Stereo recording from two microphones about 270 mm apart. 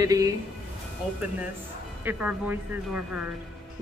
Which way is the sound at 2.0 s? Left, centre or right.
Centre.